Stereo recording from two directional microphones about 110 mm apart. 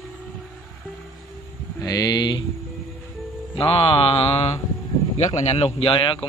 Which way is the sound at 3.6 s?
55° left (ahead or behind).